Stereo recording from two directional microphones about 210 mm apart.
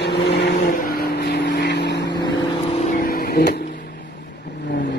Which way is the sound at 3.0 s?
45° left (ahead or behind).